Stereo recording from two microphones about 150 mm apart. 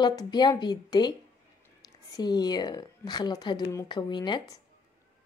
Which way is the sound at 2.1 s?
30° left (ahead or behind).